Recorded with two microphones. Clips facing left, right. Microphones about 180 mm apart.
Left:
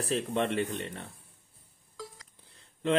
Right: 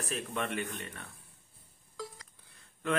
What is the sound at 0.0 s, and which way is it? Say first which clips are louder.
A man's voice: left 7 dB; 30° left (ahead or behind).